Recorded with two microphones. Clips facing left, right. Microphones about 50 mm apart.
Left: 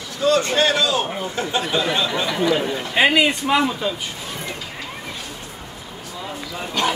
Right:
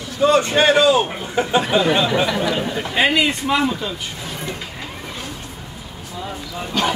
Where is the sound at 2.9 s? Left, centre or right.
Centre.